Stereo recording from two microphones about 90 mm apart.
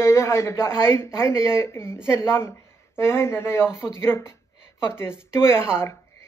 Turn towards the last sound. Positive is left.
turn(degrees=30)  # may be behind; listen again after turning